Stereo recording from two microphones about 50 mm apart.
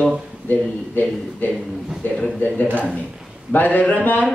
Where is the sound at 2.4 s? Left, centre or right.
Left.